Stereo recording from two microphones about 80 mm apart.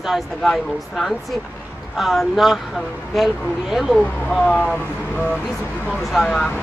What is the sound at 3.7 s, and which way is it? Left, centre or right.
Speech, centre.